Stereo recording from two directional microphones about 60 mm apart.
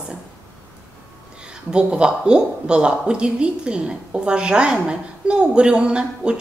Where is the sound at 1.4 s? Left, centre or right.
Centre.